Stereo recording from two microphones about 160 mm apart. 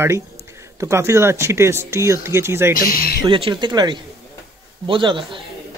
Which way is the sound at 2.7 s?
70° left (ahead or behind).